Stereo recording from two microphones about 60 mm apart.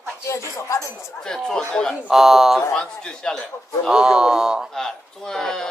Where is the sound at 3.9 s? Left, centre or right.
Centre.